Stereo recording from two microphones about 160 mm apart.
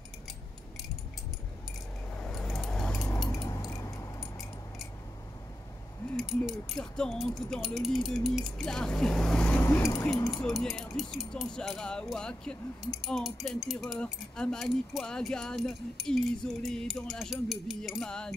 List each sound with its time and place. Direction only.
2.1 s keys jangling: 5° left (ahead or behind)
3.3 s keys jangling: 20° left (ahead or behind)
6.1 s speech: centre (ahead or behind)